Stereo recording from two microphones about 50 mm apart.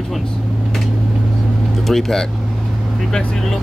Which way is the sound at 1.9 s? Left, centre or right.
Centre.